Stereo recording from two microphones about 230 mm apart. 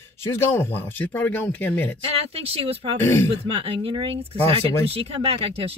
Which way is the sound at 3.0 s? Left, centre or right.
Centre.